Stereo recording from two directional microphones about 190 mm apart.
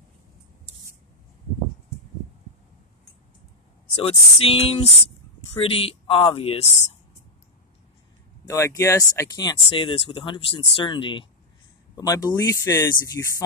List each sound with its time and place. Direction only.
3.9 s a sound: 30° left (ahead or behind)
5.5 s speech: 30° left (ahead or behind)
8.5 s speech: 15° left (ahead or behind)